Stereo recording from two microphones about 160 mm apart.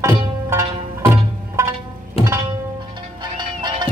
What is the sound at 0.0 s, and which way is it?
Music, 15° right (ahead or behind).